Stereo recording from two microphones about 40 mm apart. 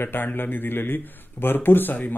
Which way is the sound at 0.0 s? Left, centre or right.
Left.